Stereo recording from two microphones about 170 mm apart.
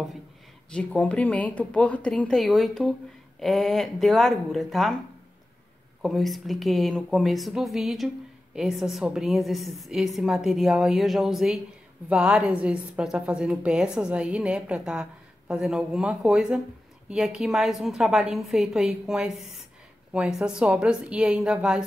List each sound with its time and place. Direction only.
0.7 s a woman's voice: 5° left (ahead or behind)
6.0 s a woman's voice: centre (ahead or behind)